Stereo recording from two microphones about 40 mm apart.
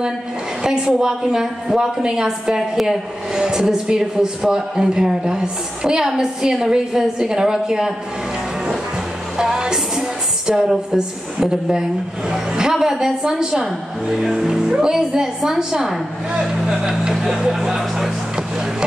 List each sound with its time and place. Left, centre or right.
0.7 s a man's voice: centre
9.4 s music: centre
10.7 s a man's voice: centre